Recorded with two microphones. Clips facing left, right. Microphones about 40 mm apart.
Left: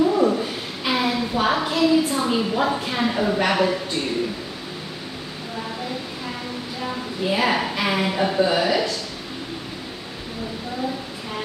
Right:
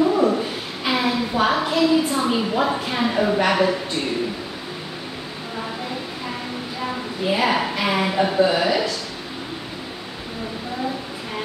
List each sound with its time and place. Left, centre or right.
0.0 s a sound: centre
0.8 s a woman's voice: centre
7.3 s a woman's voice: centre